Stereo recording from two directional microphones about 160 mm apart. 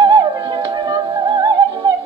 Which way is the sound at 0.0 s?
30° right (ahead or behind).